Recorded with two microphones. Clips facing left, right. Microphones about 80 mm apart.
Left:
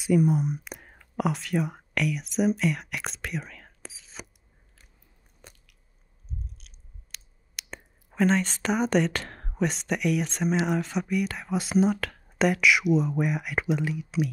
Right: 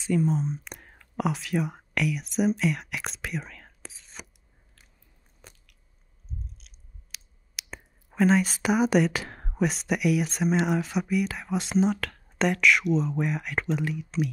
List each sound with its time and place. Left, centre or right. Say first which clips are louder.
0.0 s speech: left 3 dB; centre
0.7 s whispering: left 2 dB; centre
5.4 s biting: left 1 dB; centre
6.6 s speech: left 1 dB; centre